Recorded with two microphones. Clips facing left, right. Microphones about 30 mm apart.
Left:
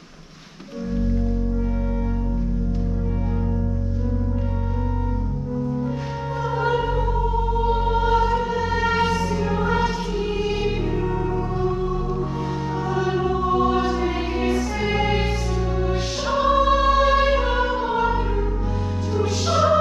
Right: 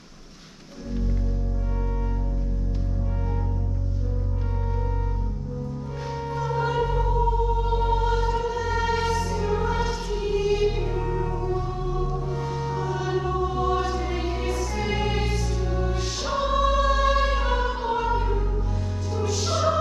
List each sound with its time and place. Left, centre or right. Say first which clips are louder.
6.4 s music: left 3 dB; centre
12.7 s music: left 5 dB; centre
14.9 s music: left 5 dB; centre
15.8 s music: left 4 dB; left
19.1 s music: left 5 dB; left